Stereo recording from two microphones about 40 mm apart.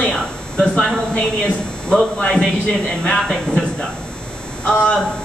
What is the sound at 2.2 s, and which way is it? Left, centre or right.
Speech, left.